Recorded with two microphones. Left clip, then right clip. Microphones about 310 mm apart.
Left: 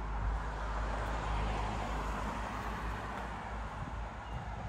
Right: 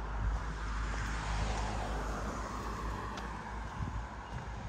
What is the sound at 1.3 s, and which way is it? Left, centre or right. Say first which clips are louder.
Vehicle: left 1 dB; left.